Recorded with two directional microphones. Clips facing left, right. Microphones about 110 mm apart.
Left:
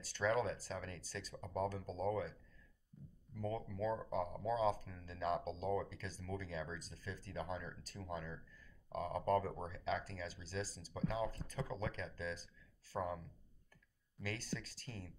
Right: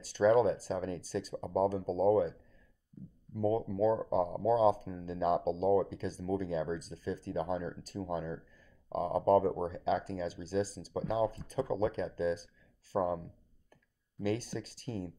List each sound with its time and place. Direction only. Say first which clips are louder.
0.0 s speech: right 11 dB; 20° right (ahead or behind)
3.0 s speech: right 9 dB; centre (ahead or behind)
3.3 s speech: right 11 dB; 25° right (ahead or behind)